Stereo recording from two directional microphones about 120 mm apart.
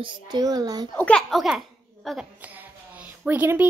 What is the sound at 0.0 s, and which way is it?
Speech, 40° right (ahead or behind).